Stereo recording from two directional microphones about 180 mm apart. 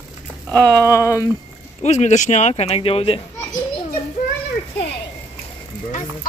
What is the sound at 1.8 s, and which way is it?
A child's voice, 40° left (ahead or behind).